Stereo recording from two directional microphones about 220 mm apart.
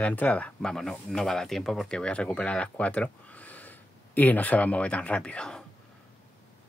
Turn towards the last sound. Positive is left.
turn(degrees=5)  # may be behind; listen again after turning